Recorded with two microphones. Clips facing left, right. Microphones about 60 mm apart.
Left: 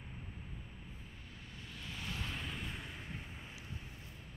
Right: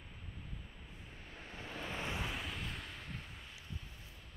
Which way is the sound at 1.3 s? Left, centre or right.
Right.